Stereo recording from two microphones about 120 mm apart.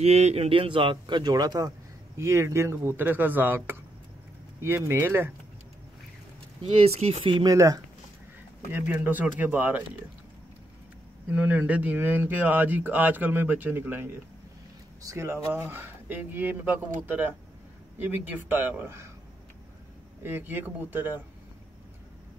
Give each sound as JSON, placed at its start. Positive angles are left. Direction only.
{"t": 0.0, "sound": "a man's voice", "side_deg": -60}
{"t": 2.1, "sound": "speech", "side_deg": -25}
{"t": 6.6, "sound": "speech", "side_deg": -60}
{"t": 7.3, "sound": "speech", "side_deg": -30}
{"t": 8.7, "sound": "speech", "side_deg": -15}
{"t": 11.2, "sound": "speech", "side_deg": -15}
{"t": 20.2, "sound": "speech", "side_deg": -20}